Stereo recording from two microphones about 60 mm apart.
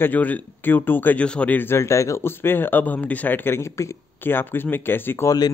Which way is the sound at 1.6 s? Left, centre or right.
Left.